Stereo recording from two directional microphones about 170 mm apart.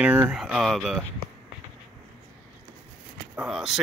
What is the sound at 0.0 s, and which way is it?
Speech, 5° right (ahead or behind).